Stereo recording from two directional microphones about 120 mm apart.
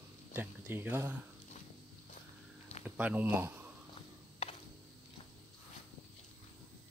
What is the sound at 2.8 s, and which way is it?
Speech, 15° right (ahead or behind).